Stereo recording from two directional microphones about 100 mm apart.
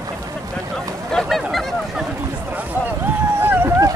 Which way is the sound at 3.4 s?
20° right (ahead or behind).